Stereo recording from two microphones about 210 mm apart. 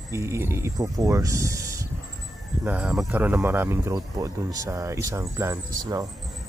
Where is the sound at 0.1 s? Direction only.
15° right (ahead or behind).